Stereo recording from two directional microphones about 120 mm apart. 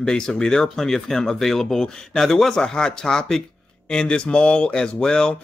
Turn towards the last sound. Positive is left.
turn(degrees=5)  # may be behind; listen again after turning